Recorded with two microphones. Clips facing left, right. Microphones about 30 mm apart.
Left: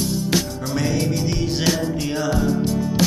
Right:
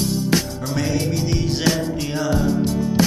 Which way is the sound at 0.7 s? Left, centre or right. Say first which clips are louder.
Even; centre.